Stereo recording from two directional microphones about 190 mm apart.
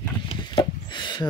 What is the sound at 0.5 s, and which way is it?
Wood, 25° left (ahead or behind).